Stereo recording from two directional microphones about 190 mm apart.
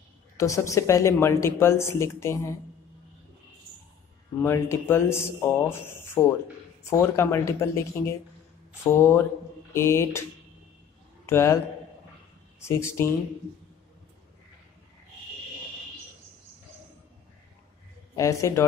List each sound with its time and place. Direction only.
0.4 s a woman's voice: 15° left (ahead or behind)
4.4 s a woman's voice: 10° left (ahead or behind)
11.2 s a woman's voice: 15° left (ahead or behind)
18.1 s a woman's voice: 15° left (ahead or behind)